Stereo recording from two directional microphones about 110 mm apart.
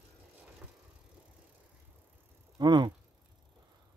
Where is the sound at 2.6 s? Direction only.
40° right (ahead or behind).